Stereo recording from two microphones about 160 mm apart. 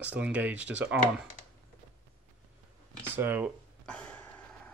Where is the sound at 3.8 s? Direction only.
5° left (ahead or behind).